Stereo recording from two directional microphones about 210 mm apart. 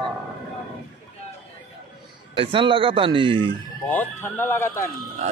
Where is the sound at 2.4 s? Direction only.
25° right (ahead or behind).